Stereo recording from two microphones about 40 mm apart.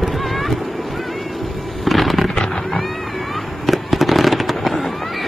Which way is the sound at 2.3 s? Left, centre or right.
Centre.